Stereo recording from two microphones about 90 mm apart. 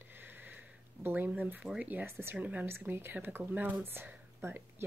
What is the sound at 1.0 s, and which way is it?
Speech, 20° right (ahead or behind).